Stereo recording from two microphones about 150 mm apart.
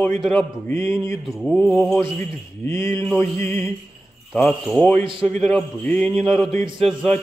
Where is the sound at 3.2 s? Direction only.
15° left (ahead or behind).